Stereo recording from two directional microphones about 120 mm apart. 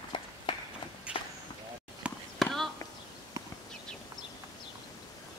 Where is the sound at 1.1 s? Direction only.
10° right (ahead or behind).